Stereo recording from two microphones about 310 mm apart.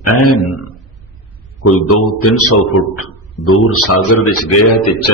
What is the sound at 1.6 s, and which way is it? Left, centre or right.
A man's voice, left.